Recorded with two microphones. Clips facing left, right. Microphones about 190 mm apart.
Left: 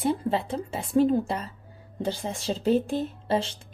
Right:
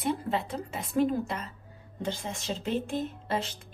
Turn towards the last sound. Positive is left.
turn(degrees=30)  # may be behind; listen again after turning